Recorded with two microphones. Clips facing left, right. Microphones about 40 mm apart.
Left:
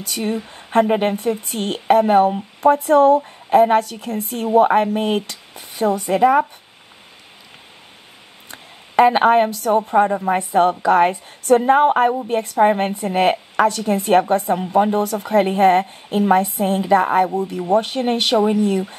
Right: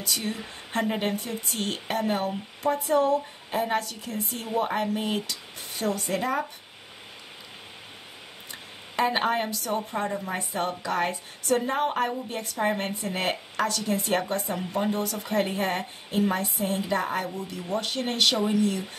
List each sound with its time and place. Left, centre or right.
0.0 s speech: left
5.8 s a woman's voice: left
8.5 s a sound: left
9.1 s speech: left